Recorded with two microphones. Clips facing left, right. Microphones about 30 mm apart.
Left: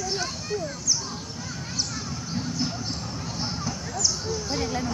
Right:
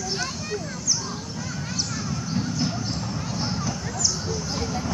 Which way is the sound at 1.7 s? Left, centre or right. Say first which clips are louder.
Right 2 dB; centre.